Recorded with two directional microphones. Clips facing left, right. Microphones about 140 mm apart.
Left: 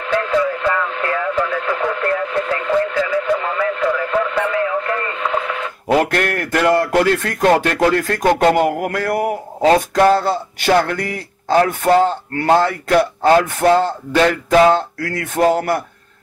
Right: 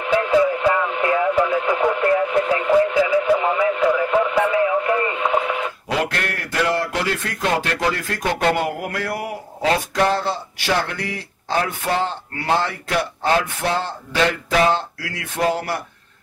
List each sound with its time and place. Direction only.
0.0 s radio: 15° right (ahead or behind)
5.9 s speech: 50° left (ahead or behind)